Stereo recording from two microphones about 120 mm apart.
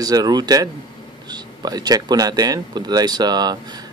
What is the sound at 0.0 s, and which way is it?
Speech, 30° right (ahead or behind).